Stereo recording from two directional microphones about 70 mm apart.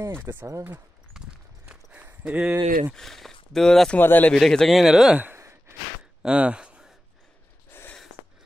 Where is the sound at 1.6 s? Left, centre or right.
Right.